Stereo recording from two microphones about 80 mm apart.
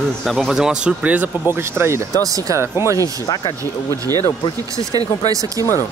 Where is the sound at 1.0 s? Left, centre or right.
Right.